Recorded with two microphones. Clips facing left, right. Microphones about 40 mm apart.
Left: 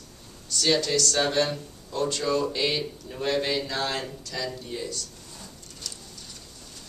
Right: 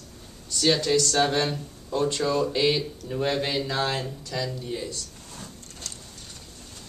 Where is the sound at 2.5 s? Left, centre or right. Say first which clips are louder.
Right 3 dB; centre.